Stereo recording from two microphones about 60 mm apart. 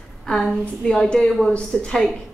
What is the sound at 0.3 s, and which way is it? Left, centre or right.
A woman's voice, centre.